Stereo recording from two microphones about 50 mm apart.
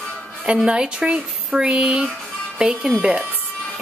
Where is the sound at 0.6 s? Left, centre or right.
Centre.